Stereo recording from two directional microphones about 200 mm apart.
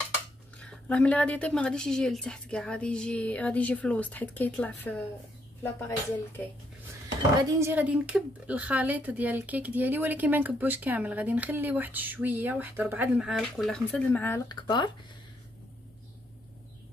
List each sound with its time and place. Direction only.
0.6 s a woman's voice: 5° left (ahead or behind)
7.3 s speech: 15° right (ahead or behind); by 14.4 s 10° left (ahead or behind)
14.5 s speech: 20° left (ahead or behind)